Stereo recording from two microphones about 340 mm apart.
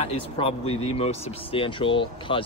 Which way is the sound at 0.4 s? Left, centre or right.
Centre.